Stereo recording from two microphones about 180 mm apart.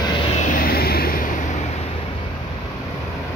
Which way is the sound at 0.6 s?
60° left (ahead or behind).